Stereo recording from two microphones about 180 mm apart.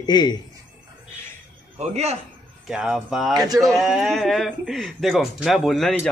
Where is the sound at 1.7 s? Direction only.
35° right (ahead or behind).